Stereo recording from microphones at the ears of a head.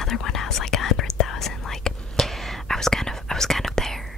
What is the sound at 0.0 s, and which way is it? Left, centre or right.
Whispering, left.